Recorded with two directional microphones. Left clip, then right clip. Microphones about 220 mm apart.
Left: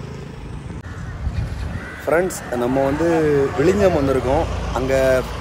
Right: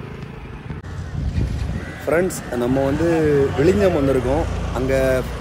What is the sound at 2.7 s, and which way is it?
Speech, 20° left (ahead or behind).